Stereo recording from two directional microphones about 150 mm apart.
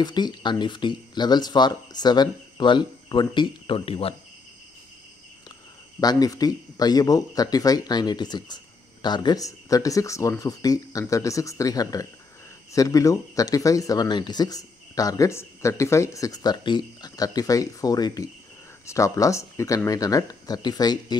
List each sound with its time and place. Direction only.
0.0 s speech: 30° left (ahead or behind)
5.9 s speech: 25° left (ahead or behind)